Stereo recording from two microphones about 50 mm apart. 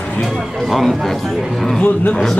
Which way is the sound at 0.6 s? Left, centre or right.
Centre.